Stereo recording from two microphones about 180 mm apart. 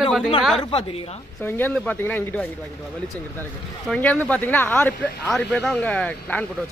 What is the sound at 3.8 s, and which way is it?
Speech, 5° left (ahead or behind).